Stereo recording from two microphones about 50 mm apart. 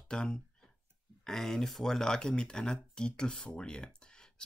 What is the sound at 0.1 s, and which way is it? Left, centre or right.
Speech, centre.